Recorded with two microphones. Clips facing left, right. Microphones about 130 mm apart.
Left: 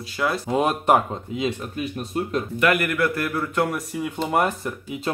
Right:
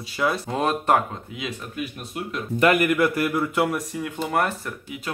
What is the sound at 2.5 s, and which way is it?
Speech, 30° right (ahead or behind).